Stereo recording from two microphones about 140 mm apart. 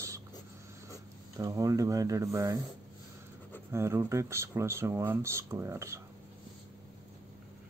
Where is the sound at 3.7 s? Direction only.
20° right (ahead or behind).